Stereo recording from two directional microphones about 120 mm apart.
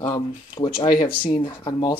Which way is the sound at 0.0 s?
40° left (ahead or behind).